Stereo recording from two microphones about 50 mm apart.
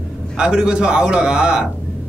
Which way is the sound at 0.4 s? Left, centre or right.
Centre.